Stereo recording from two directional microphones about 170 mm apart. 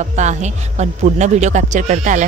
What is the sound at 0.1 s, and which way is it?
Speech, 45° right (ahead or behind).